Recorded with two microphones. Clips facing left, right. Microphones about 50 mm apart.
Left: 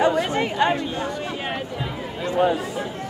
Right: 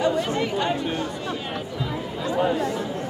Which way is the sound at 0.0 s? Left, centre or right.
Left.